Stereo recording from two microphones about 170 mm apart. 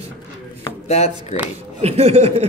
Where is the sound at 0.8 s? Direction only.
40° left (ahead or behind).